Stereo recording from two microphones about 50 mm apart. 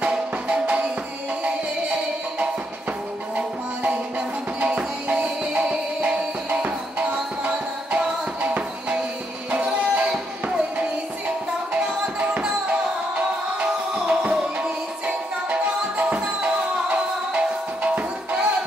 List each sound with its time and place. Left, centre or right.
0.0 s music: right
3.3 s music: right